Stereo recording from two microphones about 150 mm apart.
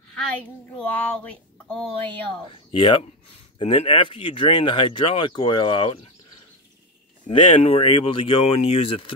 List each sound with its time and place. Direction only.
0.7 s speech: 10° left (ahead or behind)
2.7 s speech: 35° left (ahead or behind)
7.2 s speech: 35° left (ahead or behind)